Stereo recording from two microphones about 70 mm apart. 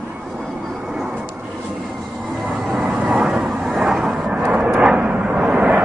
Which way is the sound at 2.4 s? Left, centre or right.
Right.